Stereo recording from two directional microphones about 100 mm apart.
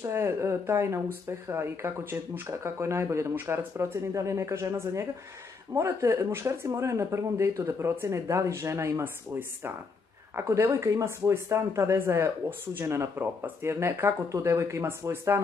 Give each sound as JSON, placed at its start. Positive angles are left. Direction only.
{"t": 0.0, "sound": "speech", "side_deg": -25}
{"t": 10.3, "sound": "speech", "side_deg": -30}